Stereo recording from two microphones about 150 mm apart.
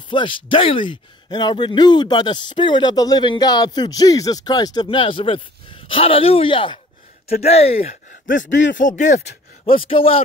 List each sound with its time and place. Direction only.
0.1 s a man's voice: 35° left (ahead or behind)
7.3 s speech: 45° left (ahead or behind)
8.1 s speech: 60° left (ahead or behind)
9.7 s a man's voice: 40° left (ahead or behind)